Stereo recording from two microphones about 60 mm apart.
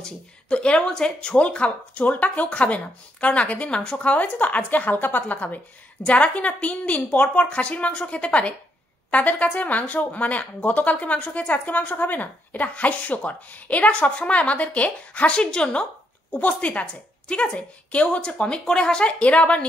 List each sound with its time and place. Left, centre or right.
0.0 s speech: centre